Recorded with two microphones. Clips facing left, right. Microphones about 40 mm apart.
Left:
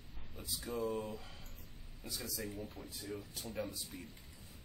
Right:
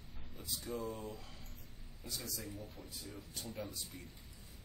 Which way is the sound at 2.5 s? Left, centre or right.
Left.